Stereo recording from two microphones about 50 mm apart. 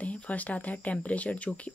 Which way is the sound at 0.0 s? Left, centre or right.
Left.